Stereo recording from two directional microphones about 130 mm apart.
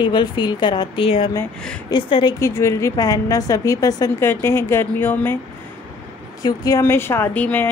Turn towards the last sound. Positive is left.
turn(degrees=15)  # may be behind; listen again after turning